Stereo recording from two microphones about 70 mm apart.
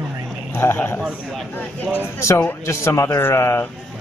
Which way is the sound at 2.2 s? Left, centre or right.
Left.